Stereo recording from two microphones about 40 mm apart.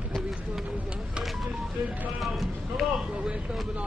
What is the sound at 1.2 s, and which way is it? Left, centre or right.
Vehicle, centre.